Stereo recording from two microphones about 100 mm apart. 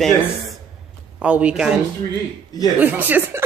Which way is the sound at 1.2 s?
10° right (ahead or behind).